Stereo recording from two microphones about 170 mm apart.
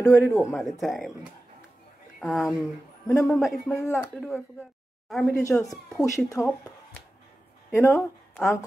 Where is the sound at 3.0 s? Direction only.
15° left (ahead or behind).